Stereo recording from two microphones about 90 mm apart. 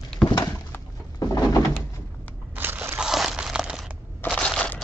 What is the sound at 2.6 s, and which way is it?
Crushing, 25° right (ahead or behind).